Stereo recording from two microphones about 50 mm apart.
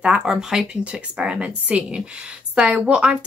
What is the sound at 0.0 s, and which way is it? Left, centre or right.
Speech, centre.